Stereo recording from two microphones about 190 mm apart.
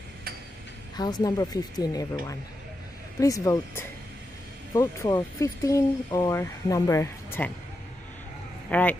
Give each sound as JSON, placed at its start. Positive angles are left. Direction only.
{"t": 0.9, "sound": "speech", "side_deg": 20}
{"t": 3.2, "sound": "speech", "side_deg": 15}
{"t": 8.6, "sound": "speech", "side_deg": 10}